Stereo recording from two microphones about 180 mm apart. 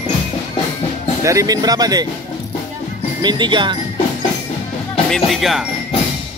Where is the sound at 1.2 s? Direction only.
15° right (ahead or behind).